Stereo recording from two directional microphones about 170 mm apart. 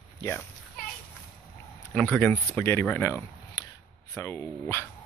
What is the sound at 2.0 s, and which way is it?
Speech, 10° left (ahead or behind).